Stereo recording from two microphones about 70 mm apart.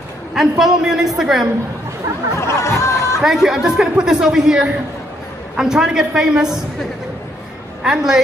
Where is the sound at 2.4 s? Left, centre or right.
Left.